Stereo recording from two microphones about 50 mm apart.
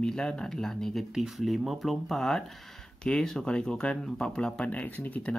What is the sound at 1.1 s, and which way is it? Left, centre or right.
Speech, centre.